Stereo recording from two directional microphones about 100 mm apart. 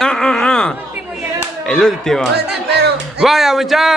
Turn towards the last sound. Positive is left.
turn(degrees=0)  # may be behind; listen again after turning